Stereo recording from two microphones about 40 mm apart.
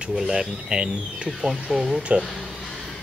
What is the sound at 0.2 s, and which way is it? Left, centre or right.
Speech, centre.